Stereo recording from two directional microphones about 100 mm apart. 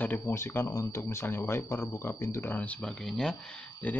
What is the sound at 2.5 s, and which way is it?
Speech, 15° left (ahead or behind).